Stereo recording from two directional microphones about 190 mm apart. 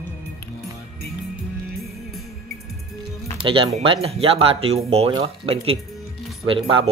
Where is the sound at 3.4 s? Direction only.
25° right (ahead or behind).